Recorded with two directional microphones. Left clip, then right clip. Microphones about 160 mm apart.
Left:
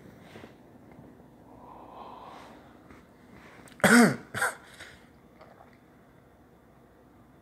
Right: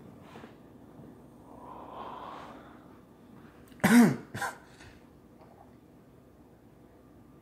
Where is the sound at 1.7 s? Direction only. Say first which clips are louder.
Right 3 dB; 40° right (ahead or behind).